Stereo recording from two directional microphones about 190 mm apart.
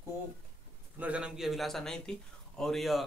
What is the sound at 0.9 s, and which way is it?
Speech, 5° right (ahead or behind).